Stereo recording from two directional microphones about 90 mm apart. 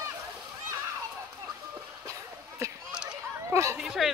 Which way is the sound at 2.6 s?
35° right (ahead or behind).